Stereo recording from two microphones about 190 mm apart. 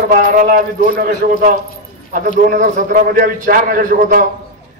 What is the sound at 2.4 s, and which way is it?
A man's voice, 50° right (ahead or behind).